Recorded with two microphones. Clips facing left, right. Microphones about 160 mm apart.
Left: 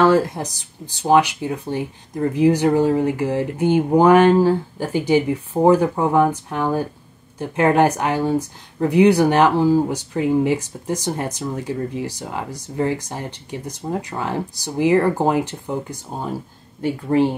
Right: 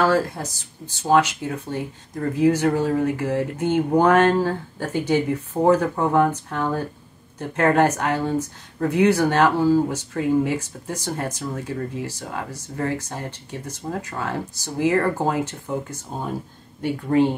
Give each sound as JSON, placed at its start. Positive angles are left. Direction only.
{"t": 0.0, "sound": "speech", "side_deg": 20}